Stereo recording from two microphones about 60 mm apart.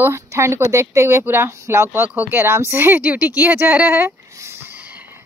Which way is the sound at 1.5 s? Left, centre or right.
Right.